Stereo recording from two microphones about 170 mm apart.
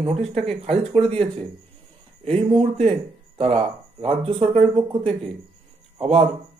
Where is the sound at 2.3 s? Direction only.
35° right (ahead or behind).